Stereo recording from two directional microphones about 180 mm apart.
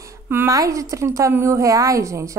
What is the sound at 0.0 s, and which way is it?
A woman's voice, 15° right (ahead or behind).